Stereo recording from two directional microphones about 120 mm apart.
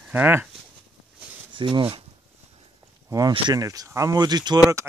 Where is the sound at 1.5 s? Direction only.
45° right (ahead or behind).